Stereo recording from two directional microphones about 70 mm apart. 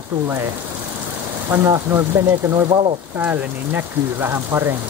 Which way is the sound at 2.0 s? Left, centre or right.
Right.